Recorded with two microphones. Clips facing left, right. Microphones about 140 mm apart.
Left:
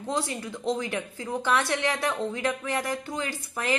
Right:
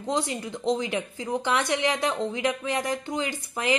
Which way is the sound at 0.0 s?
20° right (ahead or behind).